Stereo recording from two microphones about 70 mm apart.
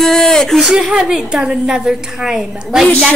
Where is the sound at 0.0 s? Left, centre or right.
Centre.